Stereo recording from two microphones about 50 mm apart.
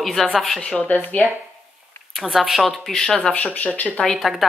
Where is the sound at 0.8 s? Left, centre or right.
Left.